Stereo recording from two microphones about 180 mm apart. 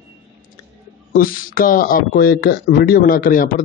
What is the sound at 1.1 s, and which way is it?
Speech, 50° left (ahead or behind).